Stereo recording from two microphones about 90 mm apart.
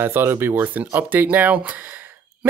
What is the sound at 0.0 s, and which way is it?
Speech, 25° right (ahead or behind).